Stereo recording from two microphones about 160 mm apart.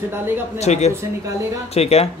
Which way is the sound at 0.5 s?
45° left (ahead or behind).